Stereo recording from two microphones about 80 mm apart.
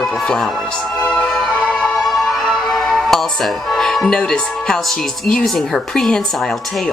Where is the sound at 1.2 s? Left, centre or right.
Centre.